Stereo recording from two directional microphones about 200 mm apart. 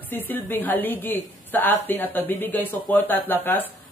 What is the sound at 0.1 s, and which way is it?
A woman's voice, 10° left (ahead or behind).